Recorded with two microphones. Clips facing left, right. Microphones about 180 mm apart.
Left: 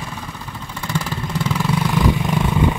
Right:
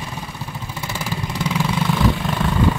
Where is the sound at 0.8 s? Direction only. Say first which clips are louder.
Left 3 dB; 5° right (ahead or behind).